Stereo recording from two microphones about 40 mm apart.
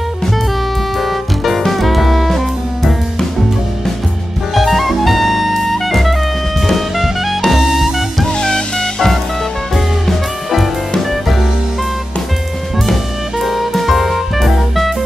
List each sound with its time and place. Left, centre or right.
1.0 s music: centre
4.6 s jazz: centre
6.7 s music: centre
8.4 s music: centre
10.0 s music: centre
12.8 s music: centre